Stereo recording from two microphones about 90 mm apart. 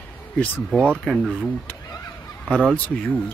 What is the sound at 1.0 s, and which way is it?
Speech, centre (ahead or behind).